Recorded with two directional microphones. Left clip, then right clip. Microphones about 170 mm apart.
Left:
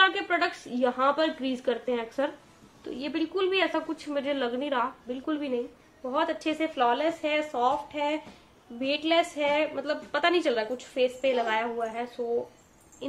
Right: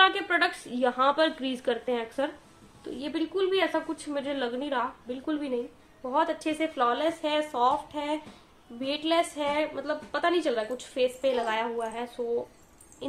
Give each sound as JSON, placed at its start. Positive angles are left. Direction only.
{"t": 0.0, "sound": "a woman's voice", "side_deg": -5}